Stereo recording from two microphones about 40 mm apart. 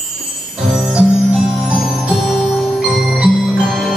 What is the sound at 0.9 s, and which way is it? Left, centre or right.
Music, right.